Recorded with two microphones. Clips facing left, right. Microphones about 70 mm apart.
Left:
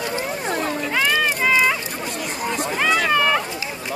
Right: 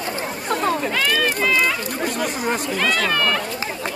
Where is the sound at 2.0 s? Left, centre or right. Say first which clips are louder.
Right 4 dB; right.